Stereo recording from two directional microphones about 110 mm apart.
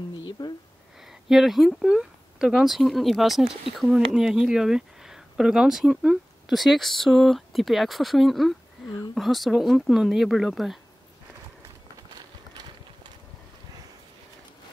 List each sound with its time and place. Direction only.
0.4 s speech: 35° left (ahead or behind)
1.3 s speech: centre (ahead or behind)
12.2 s clip-clop: 40° right (ahead or behind)